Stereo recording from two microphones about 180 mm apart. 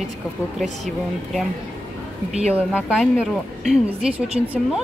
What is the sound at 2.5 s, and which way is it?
A woman's voice, 5° right (ahead or behind).